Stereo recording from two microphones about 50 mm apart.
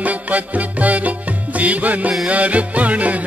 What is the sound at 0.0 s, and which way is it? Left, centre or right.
Music, right.